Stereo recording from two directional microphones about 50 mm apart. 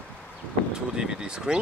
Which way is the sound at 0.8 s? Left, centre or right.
Centre.